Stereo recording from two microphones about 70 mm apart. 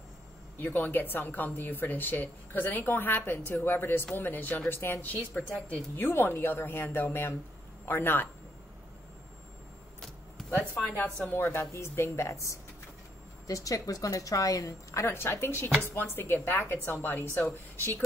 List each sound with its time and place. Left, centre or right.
0.6 s a woman's voice: left
5.5 s a woman's voice: left
6.0 s a woman's voice: left
10.0 s a sound: centre
10.8 s a woman's voice: centre
11.3 s a woman's voice: left